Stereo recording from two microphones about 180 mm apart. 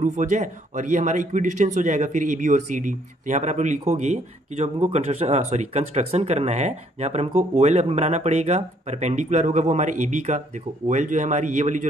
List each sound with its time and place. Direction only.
0.0 s speech: 40° right (ahead or behind)